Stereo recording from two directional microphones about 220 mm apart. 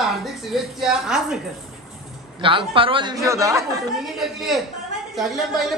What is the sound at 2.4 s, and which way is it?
A man's voice, 25° right (ahead or behind).